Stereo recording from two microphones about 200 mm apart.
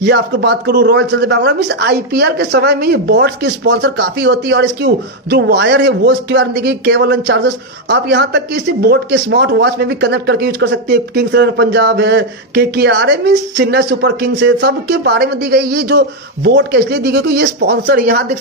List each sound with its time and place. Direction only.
0.0 s speech: 55° right (ahead or behind)